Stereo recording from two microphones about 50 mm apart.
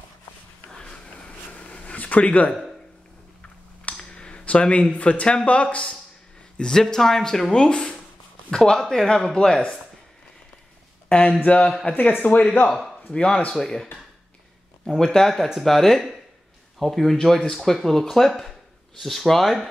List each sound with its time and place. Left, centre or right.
0.7 s a sound: centre
3.9 s a sound: centre
4.9 s speech: left
6.6 s speech: centre
11.1 s speech: left
12.6 s speech: centre
13.1 s speech: centre
15.1 s speech: centre